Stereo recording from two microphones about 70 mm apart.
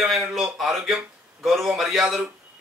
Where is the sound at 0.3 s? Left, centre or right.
Centre.